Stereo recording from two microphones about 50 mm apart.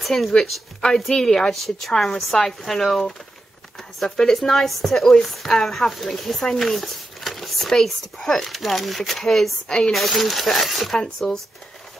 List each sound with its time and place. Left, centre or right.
0.0 s a woman's voice: centre
9.7 s a woman's voice: centre
9.9 s a woman's voice: centre